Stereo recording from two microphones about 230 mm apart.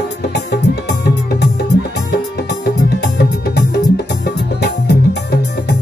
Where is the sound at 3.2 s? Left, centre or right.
Left.